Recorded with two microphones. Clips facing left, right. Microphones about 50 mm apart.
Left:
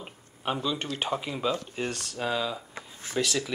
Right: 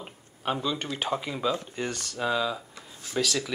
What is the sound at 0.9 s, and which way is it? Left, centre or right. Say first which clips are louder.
Speech: right 1 dB; centre.